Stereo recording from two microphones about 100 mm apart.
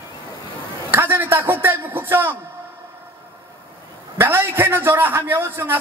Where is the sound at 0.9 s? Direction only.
20° right (ahead or behind).